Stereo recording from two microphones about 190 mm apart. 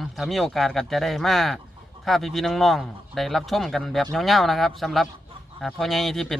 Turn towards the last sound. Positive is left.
turn(degrees=0)  # may be behind; listen again after turning